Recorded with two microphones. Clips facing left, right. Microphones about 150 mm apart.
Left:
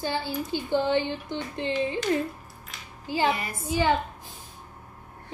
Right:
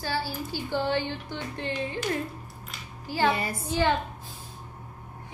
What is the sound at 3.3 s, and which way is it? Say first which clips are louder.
Music: right 1 dB; 30° right (ahead or behind).